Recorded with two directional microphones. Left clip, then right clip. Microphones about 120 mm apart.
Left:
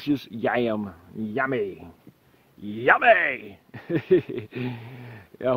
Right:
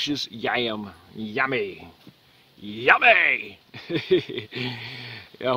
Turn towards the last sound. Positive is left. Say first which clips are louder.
# even
turn(degrees=0)  # may be behind; listen again after turning